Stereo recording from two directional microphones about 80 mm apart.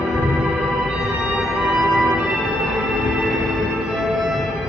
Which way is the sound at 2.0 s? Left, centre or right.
Centre.